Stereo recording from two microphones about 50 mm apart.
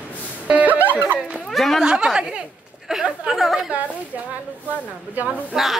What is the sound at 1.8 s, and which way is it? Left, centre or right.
Speech, centre.